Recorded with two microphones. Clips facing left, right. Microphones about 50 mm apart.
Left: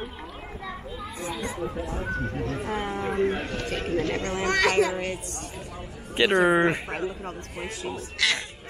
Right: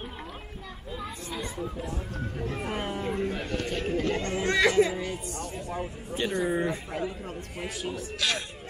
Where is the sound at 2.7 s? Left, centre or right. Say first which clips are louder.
Left 4 dB; left.